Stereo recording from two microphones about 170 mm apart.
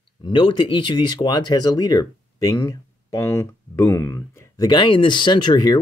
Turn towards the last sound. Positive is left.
turn(degrees=25)  # may be behind; listen again after turning